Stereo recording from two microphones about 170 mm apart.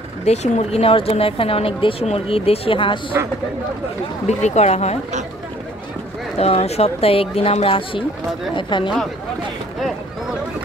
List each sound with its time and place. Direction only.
0.2 s speech: 40° left (ahead or behind)
4.3 s speech: 40° left (ahead or behind)
6.3 s speech: 40° left (ahead or behind)